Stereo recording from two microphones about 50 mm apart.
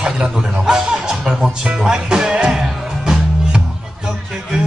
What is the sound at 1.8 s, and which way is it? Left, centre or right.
Music, centre.